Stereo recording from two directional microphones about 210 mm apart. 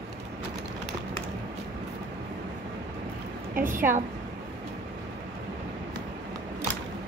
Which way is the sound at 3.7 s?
10° right (ahead or behind).